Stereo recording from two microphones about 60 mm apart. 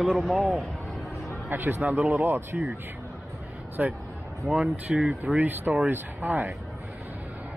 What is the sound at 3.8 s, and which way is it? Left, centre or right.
Speech, right.